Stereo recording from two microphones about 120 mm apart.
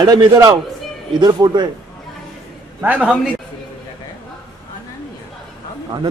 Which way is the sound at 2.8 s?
10° right (ahead or behind).